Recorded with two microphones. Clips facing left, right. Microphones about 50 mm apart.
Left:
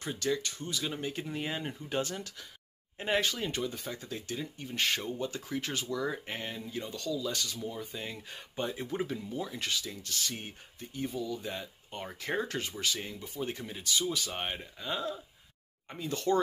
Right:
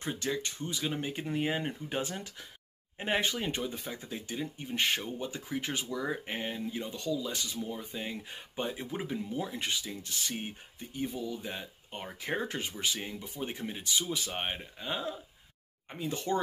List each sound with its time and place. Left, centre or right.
0.0 s speech: right
9.3 s speech: right